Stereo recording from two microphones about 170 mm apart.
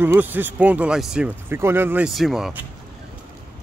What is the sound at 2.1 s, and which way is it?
Speech, centre (ahead or behind).